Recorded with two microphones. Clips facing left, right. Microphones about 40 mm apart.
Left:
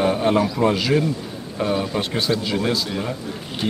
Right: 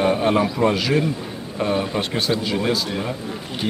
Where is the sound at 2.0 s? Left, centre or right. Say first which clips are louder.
Even; centre.